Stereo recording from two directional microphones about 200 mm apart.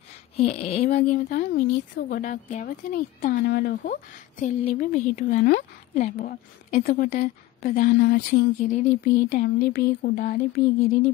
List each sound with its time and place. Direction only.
0.4 s a woman's voice: 30° left (ahead or behind)
5.1 s a woman's voice: 45° left (ahead or behind)